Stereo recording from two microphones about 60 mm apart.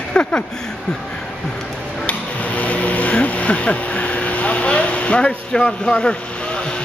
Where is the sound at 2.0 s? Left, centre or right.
Left.